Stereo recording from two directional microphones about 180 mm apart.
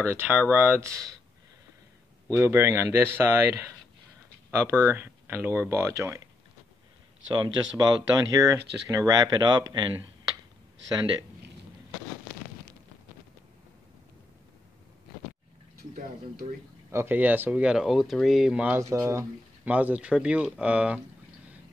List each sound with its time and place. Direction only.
0.0 s speech: 10° right (ahead or behind)
2.3 s speech: 15° right (ahead or behind)
7.7 s speech: 20° right (ahead or behind)
16.9 s speech: 10° right (ahead or behind)